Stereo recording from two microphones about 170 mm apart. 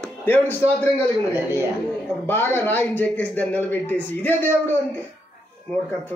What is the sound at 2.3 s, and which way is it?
A man's voice, 15° left (ahead or behind).